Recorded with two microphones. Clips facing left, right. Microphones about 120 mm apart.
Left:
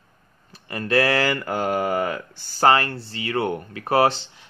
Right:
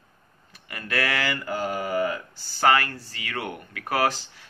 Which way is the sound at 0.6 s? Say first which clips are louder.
Left 8 dB; 30° left (ahead or behind).